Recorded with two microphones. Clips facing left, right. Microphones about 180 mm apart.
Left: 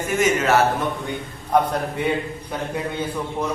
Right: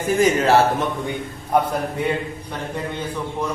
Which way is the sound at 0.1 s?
35° right (ahead or behind).